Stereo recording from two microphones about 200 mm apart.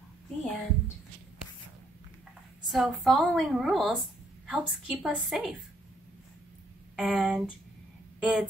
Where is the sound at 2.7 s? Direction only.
Centre (ahead or behind).